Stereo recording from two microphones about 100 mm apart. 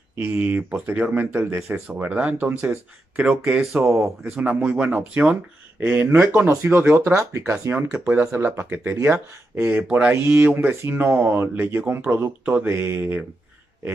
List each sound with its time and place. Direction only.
0.2 s speech: 20° right (ahead or behind)